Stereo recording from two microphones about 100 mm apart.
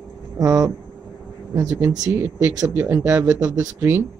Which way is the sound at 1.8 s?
25° right (ahead or behind).